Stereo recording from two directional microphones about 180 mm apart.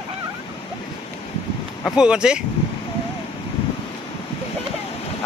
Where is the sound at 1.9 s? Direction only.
5° right (ahead or behind).